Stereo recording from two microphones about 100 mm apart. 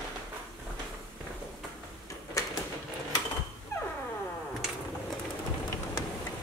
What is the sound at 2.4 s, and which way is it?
Printer, 30° left (ahead or behind).